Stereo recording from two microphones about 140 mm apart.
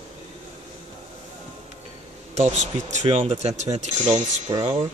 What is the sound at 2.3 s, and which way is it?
Speech, 55° right (ahead or behind).